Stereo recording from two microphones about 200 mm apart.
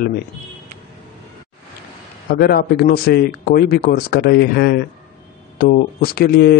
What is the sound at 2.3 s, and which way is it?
Speech, 50° left (ahead or behind).